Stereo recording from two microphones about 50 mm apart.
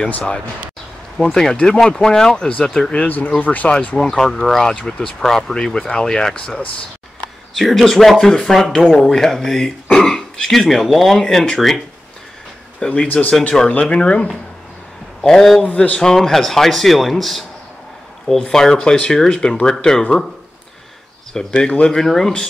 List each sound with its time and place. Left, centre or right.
1.1 s speech: centre
3.0 s speech: left
4.0 s speech: centre
7.5 s speech: centre
12.8 s speech: centre
13.3 s speech: left
15.2 s speech: centre
15.6 s speech: left
16.0 s speech: centre
18.4 s speech: centre
21.5 s speech: left
22.0 s speech: centre